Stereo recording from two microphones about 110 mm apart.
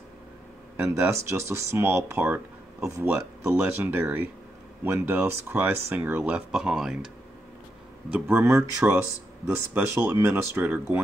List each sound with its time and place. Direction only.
0.8 s speech: 20° right (ahead or behind); by 7.1 s 5° right (ahead or behind)
8.1 s speech: 15° right (ahead or behind)